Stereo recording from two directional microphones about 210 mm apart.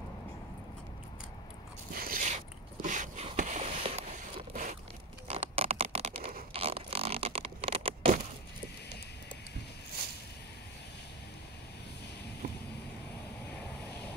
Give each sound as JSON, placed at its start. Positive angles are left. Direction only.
{"t": 2.0, "sound": "biting", "side_deg": -40}
{"t": 2.8, "sound": "a sound", "side_deg": -35}
{"t": 10.0, "sound": "vehicle", "side_deg": -45}